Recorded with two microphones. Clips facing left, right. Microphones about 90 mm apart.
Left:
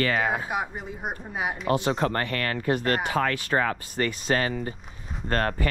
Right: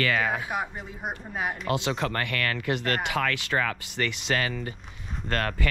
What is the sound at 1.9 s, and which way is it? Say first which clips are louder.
Speech: left 3 dB; 35° left (ahead or behind).